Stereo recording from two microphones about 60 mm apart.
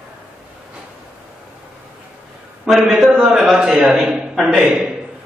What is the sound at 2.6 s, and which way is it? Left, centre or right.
A man's voice, centre.